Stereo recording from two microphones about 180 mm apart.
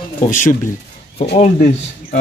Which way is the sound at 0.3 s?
45° left (ahead or behind).